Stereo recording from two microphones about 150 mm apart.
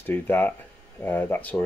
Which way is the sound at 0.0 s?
15° left (ahead or behind).